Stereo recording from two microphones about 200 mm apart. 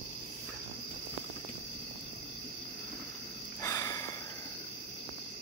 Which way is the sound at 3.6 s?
15° left (ahead or behind).